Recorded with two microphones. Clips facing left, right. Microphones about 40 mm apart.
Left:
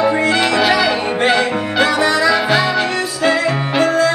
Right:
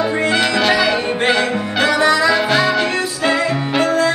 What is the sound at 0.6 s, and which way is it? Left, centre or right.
Music, centre.